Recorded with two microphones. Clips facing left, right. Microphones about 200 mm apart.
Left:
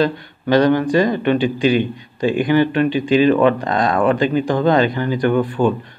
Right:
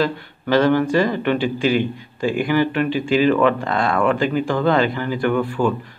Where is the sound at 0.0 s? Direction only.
15° left (ahead or behind).